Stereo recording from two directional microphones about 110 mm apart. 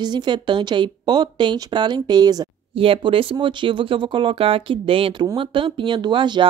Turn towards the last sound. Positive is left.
turn(degrees=-45)  # may be behind; listen again after turning